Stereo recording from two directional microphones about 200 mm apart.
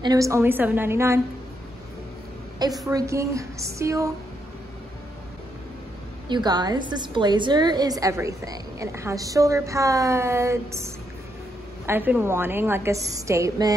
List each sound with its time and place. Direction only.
0.0 s a woman's voice: 15° right (ahead or behind)
2.9 s a woman's voice: 15° right (ahead or behind)
6.2 s a woman's voice: 20° right (ahead or behind)